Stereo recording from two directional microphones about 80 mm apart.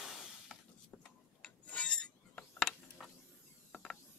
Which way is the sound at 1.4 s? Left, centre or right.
Centre.